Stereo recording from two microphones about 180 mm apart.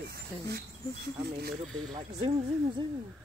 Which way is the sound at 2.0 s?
30° right (ahead or behind).